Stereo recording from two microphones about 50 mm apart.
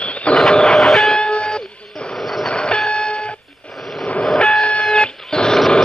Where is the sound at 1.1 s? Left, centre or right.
Centre.